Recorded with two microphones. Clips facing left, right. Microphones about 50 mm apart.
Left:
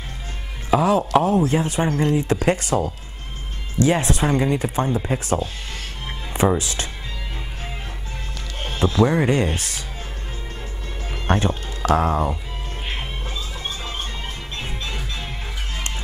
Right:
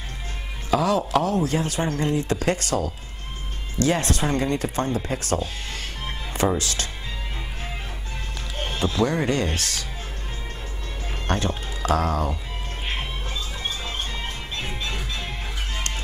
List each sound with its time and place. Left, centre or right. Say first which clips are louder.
0.7 s speech: left 3 dB; left
8.5 s music: left 4 dB; centre
9.0 s speech: left 4 dB; centre
11.2 s speech: left 4 dB; left
13.8 s music: even; centre